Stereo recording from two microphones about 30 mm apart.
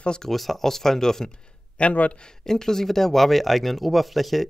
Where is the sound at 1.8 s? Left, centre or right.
Left.